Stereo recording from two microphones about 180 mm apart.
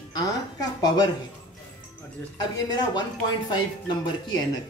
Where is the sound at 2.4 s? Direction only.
25° left (ahead or behind).